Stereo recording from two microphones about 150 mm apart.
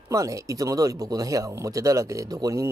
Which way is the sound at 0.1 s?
20° right (ahead or behind).